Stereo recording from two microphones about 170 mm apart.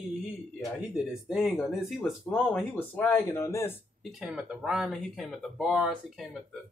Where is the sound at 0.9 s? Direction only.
5° right (ahead or behind).